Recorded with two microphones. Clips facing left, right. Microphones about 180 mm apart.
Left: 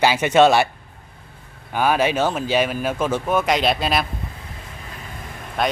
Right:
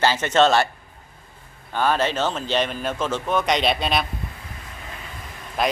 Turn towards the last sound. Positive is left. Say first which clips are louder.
# left 1 dB
turn(degrees=0)  # may be behind; listen again after turning